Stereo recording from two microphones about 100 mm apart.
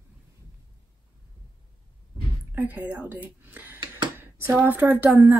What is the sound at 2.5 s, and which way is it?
Speech, 20° right (ahead or behind).